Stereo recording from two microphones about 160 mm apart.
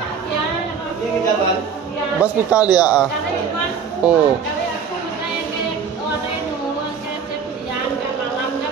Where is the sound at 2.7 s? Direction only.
25° left (ahead or behind).